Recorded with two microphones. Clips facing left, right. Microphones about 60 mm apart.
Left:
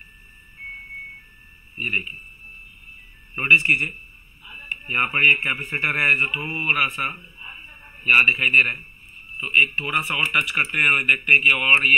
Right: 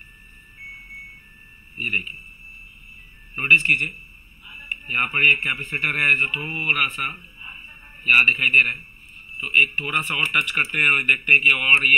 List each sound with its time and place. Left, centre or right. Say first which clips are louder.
1.8 s speech: even; centre
3.3 s speech: even; centre
7.2 s a sound: even; left
8.0 s speech: even; centre